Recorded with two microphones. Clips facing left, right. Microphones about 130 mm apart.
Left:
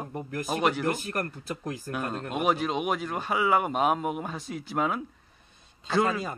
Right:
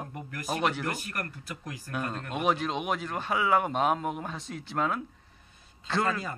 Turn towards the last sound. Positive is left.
turn(degrees=10)  # may be behind; listen again after turning